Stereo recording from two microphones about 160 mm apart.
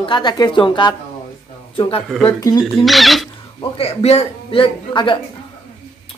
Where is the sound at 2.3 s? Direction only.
20° left (ahead or behind).